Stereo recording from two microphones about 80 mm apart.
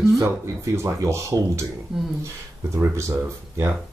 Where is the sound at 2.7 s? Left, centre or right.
Right.